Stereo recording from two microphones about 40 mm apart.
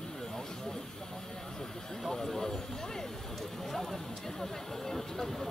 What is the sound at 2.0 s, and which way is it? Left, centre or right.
Speech, centre.